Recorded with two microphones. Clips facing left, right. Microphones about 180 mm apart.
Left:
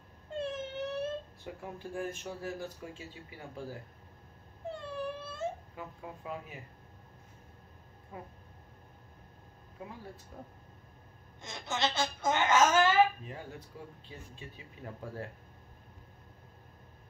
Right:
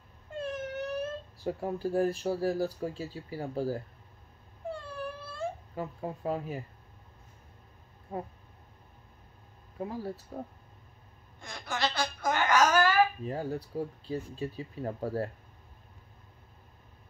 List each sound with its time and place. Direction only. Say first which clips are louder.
0.4 s wail: right 1 dB; 25° left (ahead or behind)
1.4 s speech: right 10 dB; 35° right (ahead or behind)
4.6 s a sound: even; 20° left (ahead or behind)
5.8 s speech: right 8 dB; 40° right (ahead or behind)
8.1 s speech: right 9 dB; 40° right (ahead or behind)
9.8 s speech: right 10 dB; 40° right (ahead or behind)
11.4 s a sound: right 1 dB; 20° left (ahead or behind)
13.2 s speech: right 11 dB; 40° right (ahead or behind)